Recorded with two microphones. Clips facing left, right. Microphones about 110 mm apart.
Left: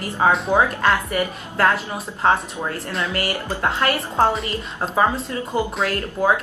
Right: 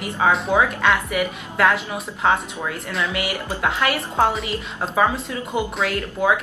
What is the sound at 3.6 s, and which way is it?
Speech, 35° left (ahead or behind).